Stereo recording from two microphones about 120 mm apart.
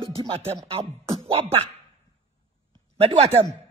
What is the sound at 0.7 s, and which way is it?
Speech, 50° right (ahead or behind).